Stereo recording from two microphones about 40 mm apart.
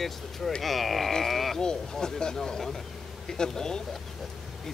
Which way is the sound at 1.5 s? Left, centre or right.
Centre.